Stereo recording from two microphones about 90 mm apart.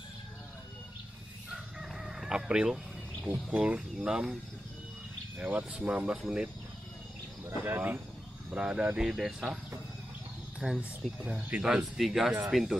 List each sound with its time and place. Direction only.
1.5 s chicken: 5° right (ahead or behind)
3.3 s speech: 15° right (ahead or behind)
5.4 s speech: 20° right (ahead or behind)
7.4 s speech: 25° right (ahead or behind)
8.5 s speech: 10° right (ahead or behind)
10.6 s speech: 5° left (ahead or behind)
11.1 s speech: 15° right (ahead or behind)